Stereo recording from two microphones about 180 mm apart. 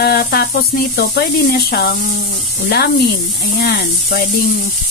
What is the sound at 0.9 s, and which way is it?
Speech, 60° left (ahead or behind).